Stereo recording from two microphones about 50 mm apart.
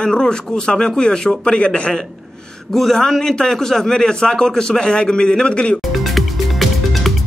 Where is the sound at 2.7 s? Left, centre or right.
Centre.